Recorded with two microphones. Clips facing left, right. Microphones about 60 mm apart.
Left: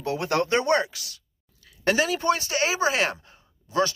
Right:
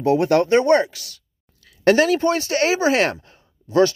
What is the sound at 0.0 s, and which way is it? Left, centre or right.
Speech, right.